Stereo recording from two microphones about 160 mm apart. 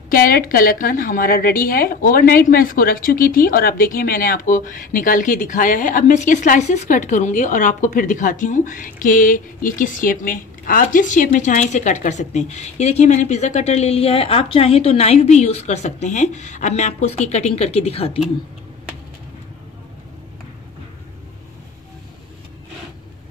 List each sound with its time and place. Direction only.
0.1 s a woman's voice: 65° left (ahead or behind); by 18.2 s 40° left (ahead or behind)